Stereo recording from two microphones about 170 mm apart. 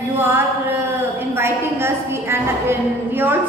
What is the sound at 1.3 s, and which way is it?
A woman's voice, 15° right (ahead or behind).